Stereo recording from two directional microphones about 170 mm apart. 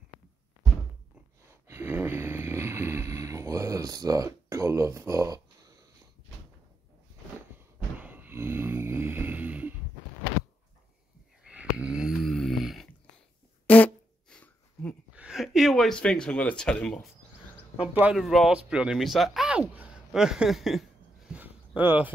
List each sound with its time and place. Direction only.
1.7 s speech: 15° right (ahead or behind)
8.0 s snoring: 10° right (ahead or behind)
11.4 s snoring: 5° right (ahead or behind)
13.7 s fart: 10° left (ahead or behind)
15.1 s speech: 5° right (ahead or behind)
17.9 s a sound: 5° right (ahead or behind)
18.7 s speech: 5° right (ahead or behind)
20.1 s a sound: 5° right (ahead or behind)